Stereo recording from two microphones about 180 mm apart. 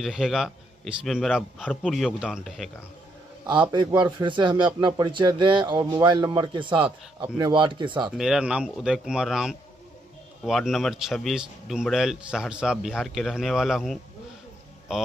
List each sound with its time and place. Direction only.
0.0 s a man's voice: centre (ahead or behind)
3.4 s speech: 25° right (ahead or behind)
8.2 s a man's voice: 5° right (ahead or behind)